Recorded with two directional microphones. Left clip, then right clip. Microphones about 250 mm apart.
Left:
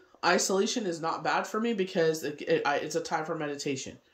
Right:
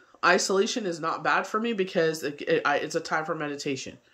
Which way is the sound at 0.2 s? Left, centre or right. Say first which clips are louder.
Right 4 dB; centre.